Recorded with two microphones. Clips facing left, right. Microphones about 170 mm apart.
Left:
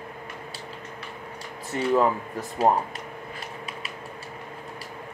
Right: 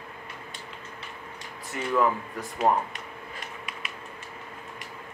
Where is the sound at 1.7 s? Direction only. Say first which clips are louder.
Left 6 dB; 30° left (ahead or behind).